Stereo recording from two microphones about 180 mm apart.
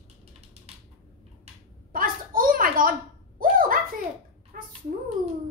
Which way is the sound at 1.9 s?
50° right (ahead or behind).